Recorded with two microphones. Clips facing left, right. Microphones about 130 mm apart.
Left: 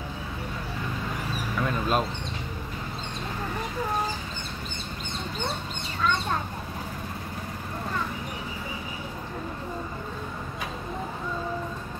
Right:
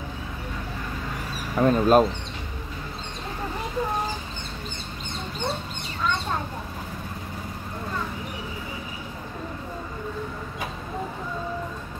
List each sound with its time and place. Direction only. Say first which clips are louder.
1.6 s speech: right 9 dB; 40° right (ahead or behind)